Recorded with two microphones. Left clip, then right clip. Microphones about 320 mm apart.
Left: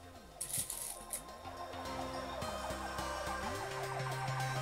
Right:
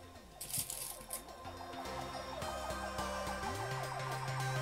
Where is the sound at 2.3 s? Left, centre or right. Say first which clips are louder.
Even; centre.